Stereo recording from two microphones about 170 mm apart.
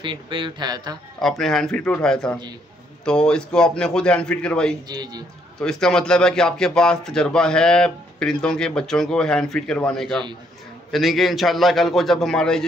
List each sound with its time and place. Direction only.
0.0 s a man's voice: 30° right (ahead or behind)
1.2 s speech: centre (ahead or behind)
4.8 s a man's voice: 25° right (ahead or behind)
5.6 s speech: 5° left (ahead or behind)